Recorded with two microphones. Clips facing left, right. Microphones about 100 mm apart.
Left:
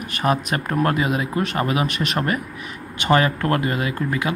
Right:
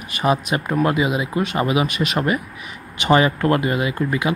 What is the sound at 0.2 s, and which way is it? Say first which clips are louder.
Speech: right 2 dB; 5° right (ahead or behind).